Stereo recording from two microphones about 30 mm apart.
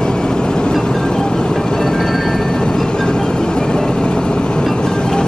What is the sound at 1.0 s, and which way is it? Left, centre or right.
Music, left.